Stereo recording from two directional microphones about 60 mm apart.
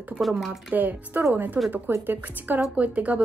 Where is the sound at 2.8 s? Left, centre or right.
Right.